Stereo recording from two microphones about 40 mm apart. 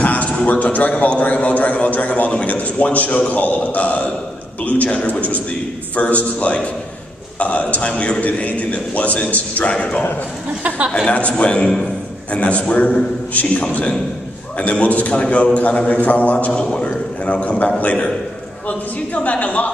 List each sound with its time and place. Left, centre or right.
0.0 s a sound: left
0.5 s a man's voice: left
11.1 s a man's voice: left
16.5 s a man's voice: left
16.8 s a man's voice: left